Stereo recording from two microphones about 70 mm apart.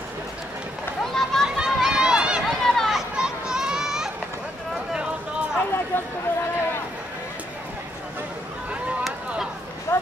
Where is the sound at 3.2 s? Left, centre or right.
Centre.